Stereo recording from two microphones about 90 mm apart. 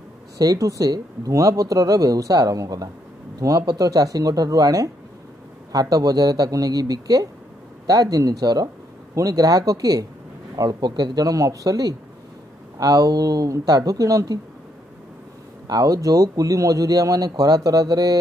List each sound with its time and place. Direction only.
0.4 s a man's voice: 40° right (ahead or behind)
15.6 s a man's voice: 45° right (ahead or behind)